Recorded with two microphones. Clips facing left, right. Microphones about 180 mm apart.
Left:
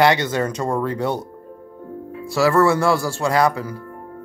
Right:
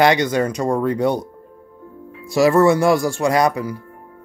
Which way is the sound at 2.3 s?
20° right (ahead or behind).